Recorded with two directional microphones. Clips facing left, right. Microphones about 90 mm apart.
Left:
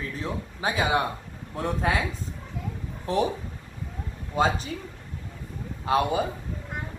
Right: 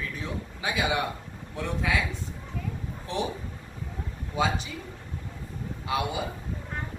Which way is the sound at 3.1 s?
40° left (ahead or behind).